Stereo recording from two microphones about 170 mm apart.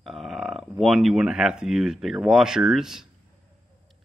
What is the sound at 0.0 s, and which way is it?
Speech, centre (ahead or behind).